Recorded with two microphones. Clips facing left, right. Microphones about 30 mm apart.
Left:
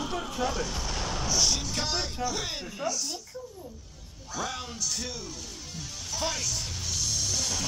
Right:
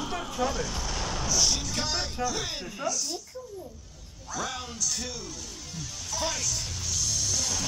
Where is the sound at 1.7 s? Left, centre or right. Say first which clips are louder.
Even; centre.